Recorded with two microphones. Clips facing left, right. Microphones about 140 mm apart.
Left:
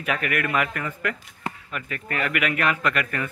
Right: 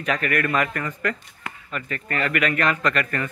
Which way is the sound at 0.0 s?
10° left (ahead or behind).